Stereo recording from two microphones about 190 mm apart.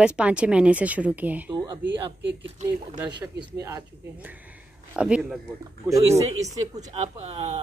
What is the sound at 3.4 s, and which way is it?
Speech, 15° right (ahead or behind).